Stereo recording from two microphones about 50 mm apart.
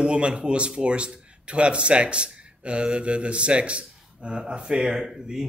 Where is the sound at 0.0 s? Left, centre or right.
Right.